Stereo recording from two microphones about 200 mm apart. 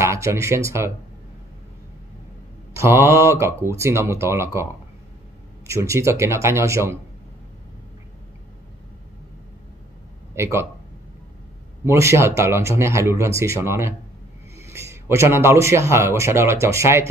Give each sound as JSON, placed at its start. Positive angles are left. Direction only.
{"t": 0.0, "sound": "speech", "side_deg": -15}
{"t": 2.7, "sound": "speech", "side_deg": -15}
{"t": 5.7, "sound": "speech", "side_deg": -15}
{"t": 10.3, "sound": "speech", "side_deg": -15}
{"t": 11.8, "sound": "a man's voice", "side_deg": -15}